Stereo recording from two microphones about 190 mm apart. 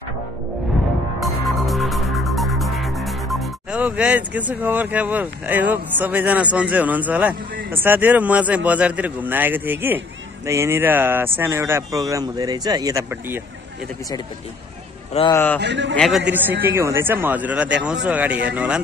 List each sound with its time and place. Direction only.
1.2 s music: centre (ahead or behind)
7.7 s a man's voice: 10° right (ahead or behind)
15.3 s a man's voice: 10° left (ahead or behind)
15.6 s a man's voice: 70° right (ahead or behind)
16.0 s a man's voice: centre (ahead or behind)